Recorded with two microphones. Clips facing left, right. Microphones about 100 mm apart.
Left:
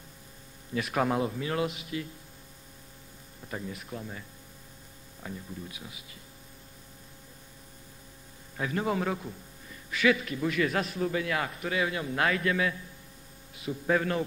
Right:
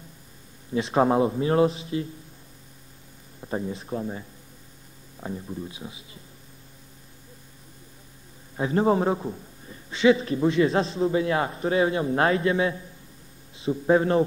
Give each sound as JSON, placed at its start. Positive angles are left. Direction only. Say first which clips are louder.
{"t": 0.7, "sound": "a man's voice", "louder": "right 7 dB", "side_deg": -25}
{"t": 3.4, "sound": "a man's voice", "louder": "right 8 dB", "side_deg": -30}
{"t": 8.5, "sound": "a man's voice", "louder": "right 8 dB", "side_deg": -30}